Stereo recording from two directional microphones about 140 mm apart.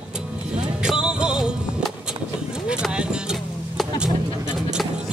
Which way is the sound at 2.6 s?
5° right (ahead or behind).